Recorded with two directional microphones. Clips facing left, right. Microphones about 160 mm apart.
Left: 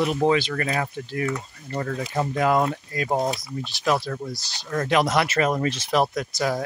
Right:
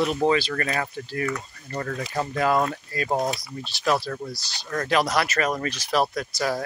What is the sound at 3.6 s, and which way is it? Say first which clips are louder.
Speech: even; 15° left (ahead or behind).